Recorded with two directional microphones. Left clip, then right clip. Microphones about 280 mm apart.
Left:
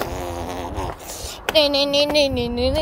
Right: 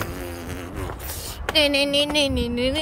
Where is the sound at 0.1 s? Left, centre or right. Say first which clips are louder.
Left 6 dB; centre.